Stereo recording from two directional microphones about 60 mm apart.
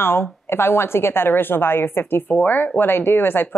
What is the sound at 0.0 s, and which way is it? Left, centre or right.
A woman's voice, left.